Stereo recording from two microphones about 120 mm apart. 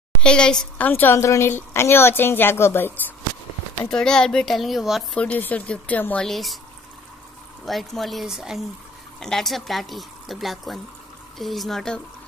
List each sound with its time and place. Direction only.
0.2 s a woman's voice: 5° left (ahead or behind)
3.9 s speech: 5° left (ahead or behind)
5.1 s speech: 10° left (ahead or behind)
6.2 s speech: centre (ahead or behind)
7.6 s speech: centre (ahead or behind)